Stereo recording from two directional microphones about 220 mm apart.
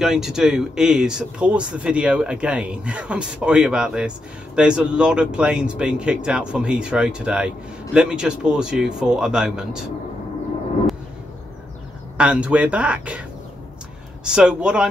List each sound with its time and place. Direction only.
0.0 s speech: centre (ahead or behind)
12.2 s speech: 5° right (ahead or behind)
14.2 s speech: 5° right (ahead or behind)